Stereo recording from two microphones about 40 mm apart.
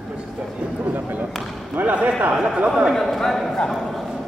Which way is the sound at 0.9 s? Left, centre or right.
Right.